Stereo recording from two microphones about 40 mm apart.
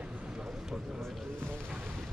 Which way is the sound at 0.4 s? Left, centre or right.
Centre.